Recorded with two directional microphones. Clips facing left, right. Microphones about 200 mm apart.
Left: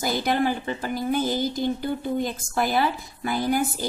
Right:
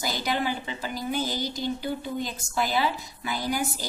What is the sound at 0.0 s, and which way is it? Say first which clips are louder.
A woman's voice: left 5 dB; 55° left (ahead or behind).